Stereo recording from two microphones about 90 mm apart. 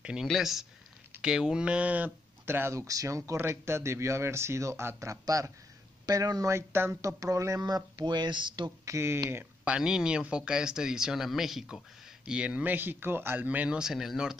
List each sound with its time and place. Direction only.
0.0 s speech: 10° right (ahead or behind)
2.4 s speech: 25° right (ahead or behind)
2.9 s speech: 40° right (ahead or behind)
6.5 s speech: 30° right (ahead or behind); by 8.7 s 60° right (ahead or behind)
8.8 s speech: 30° right (ahead or behind)
9.7 s speech: 10° right (ahead or behind)